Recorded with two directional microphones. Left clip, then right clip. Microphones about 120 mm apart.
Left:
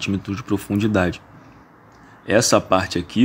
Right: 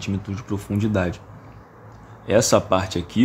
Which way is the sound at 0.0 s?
35° left (ahead or behind).